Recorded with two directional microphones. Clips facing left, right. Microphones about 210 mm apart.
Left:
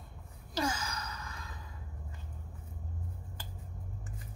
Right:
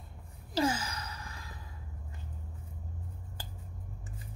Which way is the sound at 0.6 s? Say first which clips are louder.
Right 4 dB; 30° right (ahead or behind).